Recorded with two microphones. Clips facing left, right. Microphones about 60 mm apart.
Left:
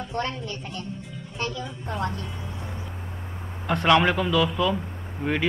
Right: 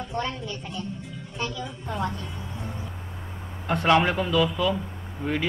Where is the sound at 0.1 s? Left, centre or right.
Right.